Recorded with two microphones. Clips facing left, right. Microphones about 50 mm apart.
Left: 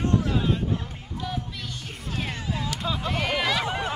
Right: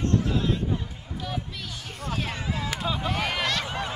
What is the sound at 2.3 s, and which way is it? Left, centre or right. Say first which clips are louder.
Music: even; right.